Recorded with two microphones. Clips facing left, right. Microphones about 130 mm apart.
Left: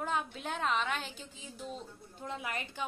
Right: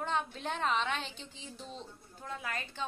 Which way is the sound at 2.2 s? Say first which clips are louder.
Left 1 dB; 20° left (ahead or behind).